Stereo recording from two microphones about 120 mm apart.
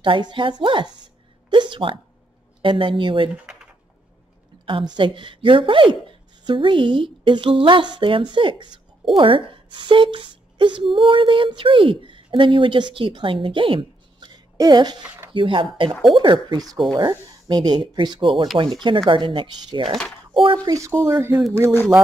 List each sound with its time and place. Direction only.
0.0 s a woman's voice: 45° right (ahead or behind)
1.5 s a sound: 45° right (ahead or behind)
2.6 s speech: 40° right (ahead or behind)
4.6 s a woman's voice: 45° right (ahead or behind)
15.0 s a sound: 20° right (ahead or behind)
15.3 s a woman's voice: 45° right (ahead or behind)
21.0 s speech: 20° right (ahead or behind)